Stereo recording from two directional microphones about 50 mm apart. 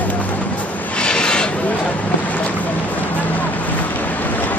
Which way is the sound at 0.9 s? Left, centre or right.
Centre.